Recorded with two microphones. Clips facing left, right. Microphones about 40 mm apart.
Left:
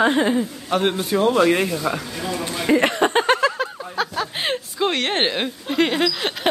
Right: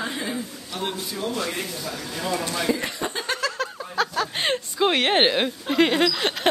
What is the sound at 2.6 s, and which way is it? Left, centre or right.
Chuckle, left.